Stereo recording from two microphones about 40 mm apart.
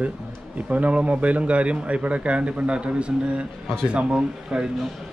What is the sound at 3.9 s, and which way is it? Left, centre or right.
Mantra, right.